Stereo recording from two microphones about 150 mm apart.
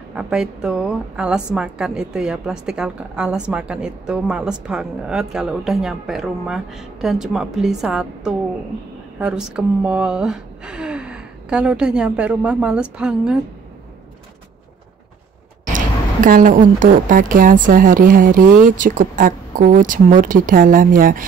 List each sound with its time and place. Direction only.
0.1 s a woman's voice: 5° right (ahead or behind)
15.6 s a woman's voice: 60° right (ahead or behind)